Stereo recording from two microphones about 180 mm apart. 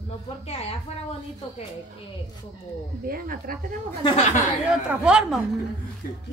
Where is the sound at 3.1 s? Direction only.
55° right (ahead or behind).